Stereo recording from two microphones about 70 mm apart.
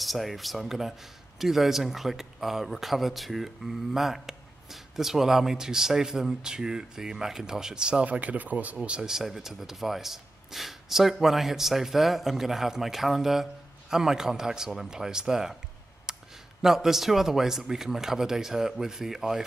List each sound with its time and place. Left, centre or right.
0.0 s speech: centre
16.1 s a sound: centre
16.6 s speech: centre